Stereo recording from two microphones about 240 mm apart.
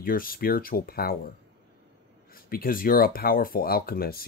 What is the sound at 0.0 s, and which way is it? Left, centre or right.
Speech, left.